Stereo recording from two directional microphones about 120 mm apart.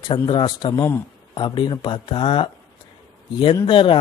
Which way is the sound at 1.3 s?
40° left (ahead or behind).